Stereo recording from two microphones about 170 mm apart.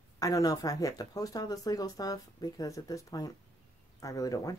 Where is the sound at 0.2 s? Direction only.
20° left (ahead or behind).